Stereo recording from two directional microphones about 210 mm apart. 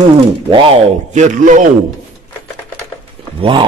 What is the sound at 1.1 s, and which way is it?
Speech, 35° right (ahead or behind).